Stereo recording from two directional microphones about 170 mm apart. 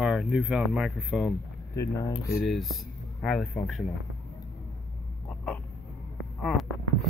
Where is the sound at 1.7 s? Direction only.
20° left (ahead or behind).